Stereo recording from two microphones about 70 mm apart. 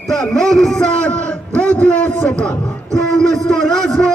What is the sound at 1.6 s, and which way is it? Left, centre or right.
Speech, centre.